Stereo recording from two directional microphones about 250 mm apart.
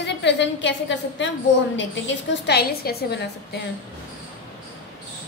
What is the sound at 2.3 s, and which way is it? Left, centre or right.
A woman's voice, left.